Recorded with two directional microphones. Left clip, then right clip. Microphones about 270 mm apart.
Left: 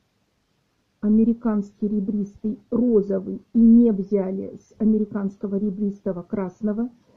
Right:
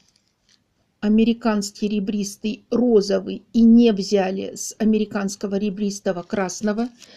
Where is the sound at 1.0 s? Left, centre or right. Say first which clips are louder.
Right 2 dB; centre.